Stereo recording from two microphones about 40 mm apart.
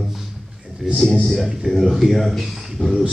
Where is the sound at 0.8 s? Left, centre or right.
Centre.